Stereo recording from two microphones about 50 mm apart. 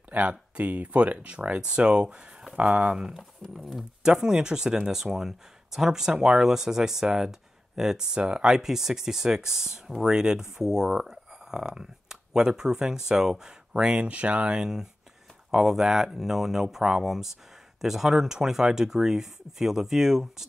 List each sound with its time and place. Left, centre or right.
0.1 s speech: right
2.8 s speech: centre
14.6 s speech: centre